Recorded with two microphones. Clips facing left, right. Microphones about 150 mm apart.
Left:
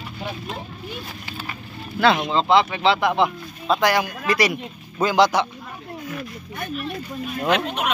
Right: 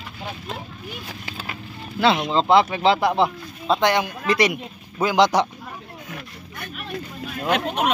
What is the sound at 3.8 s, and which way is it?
A man's voice, 20° right (ahead or behind).